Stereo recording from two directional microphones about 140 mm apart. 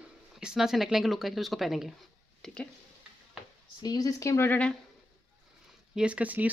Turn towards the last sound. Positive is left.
turn(degrees=-10)  # may be behind; listen again after turning